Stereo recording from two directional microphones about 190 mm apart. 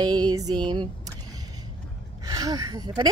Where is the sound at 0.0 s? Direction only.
20° right (ahead or behind).